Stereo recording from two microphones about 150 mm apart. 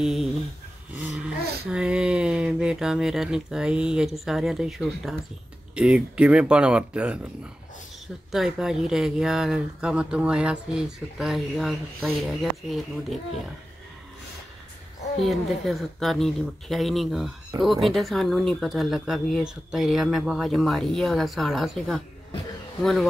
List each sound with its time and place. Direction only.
0.0 s speech: 5° right (ahead or behind)
0.9 s dog: 5° right (ahead or behind)
1.7 s speech: 5° right (ahead or behind)
8.3 s speech: 5° right (ahead or behind)
15.2 s speech: centre (ahead or behind)